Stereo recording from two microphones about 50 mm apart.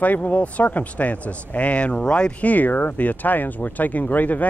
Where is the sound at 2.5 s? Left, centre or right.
Left.